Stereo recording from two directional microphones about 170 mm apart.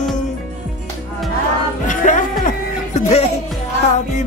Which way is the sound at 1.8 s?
50° left (ahead or behind).